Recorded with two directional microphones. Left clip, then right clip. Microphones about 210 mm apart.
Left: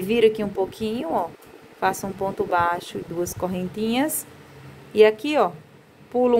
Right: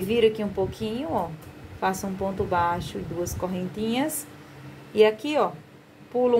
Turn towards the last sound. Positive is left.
turn(degrees=30)  # may be behind; listen again after turning